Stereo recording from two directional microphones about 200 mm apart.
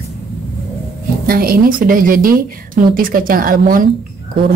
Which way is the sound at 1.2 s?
45° right (ahead or behind).